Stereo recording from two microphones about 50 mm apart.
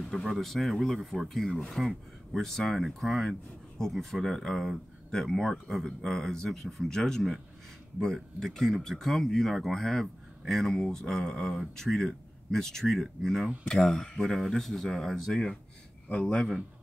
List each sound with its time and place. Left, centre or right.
0.0 s speech: centre
1.5 s a man's voice: left
2.3 s a man's voice: centre